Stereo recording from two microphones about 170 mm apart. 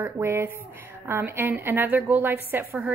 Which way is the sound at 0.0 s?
15° right (ahead or behind).